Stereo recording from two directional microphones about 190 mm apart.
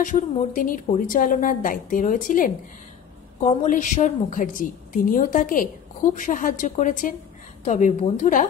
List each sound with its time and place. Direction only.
0.0 s a woman's voice: 45° left (ahead or behind)